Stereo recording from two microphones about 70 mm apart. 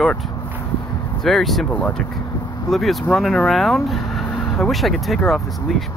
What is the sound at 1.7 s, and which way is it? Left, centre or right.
Speech, centre.